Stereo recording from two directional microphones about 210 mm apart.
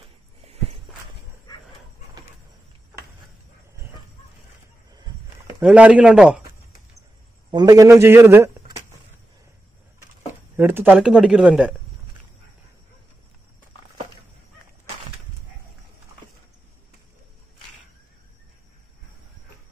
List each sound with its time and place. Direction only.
0.5 s walk: 30° right (ahead or behind)
5.6 s speech: 5° right (ahead or behind)
7.5 s a man's voice: 15° right (ahead or behind)
10.5 s speech: 10° right (ahead or behind)